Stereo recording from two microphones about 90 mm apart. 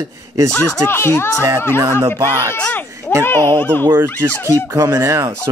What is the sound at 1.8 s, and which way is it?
Speech, 30° right (ahead or behind).